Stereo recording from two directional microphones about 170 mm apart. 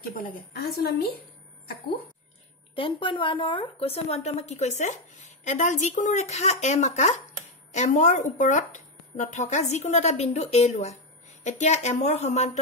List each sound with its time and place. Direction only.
0.2 s a woman's voice: 65° left (ahead or behind)
2.7 s speech: 30° left (ahead or behind)